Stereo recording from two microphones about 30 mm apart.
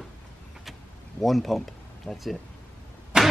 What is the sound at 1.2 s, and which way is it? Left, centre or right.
Speech, centre.